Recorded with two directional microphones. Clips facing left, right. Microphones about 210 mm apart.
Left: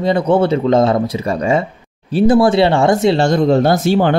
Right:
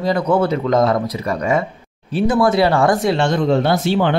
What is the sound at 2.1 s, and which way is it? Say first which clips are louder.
Speech: left 4 dB; 35° left (ahead or behind).